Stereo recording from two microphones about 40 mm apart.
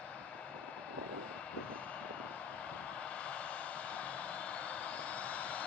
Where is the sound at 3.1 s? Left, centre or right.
Left.